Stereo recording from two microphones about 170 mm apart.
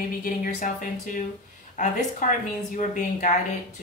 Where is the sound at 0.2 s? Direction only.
50° left (ahead or behind).